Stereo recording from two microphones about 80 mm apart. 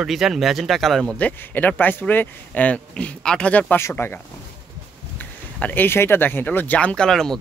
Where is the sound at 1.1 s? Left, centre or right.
Centre.